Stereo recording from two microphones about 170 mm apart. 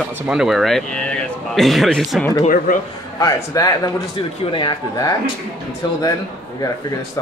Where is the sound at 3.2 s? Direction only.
20° left (ahead or behind).